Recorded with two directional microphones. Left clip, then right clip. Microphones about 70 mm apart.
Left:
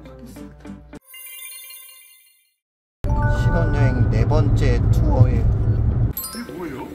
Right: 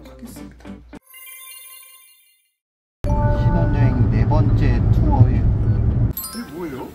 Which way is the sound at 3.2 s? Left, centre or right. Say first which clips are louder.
Left 1 dB; left.